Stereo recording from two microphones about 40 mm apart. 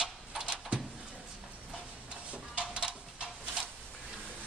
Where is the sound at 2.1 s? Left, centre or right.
Right.